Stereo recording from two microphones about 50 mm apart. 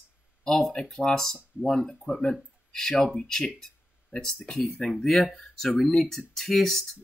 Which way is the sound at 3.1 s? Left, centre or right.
Centre.